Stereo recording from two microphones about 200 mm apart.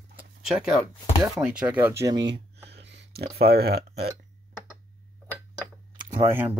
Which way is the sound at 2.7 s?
60° right (ahead or behind).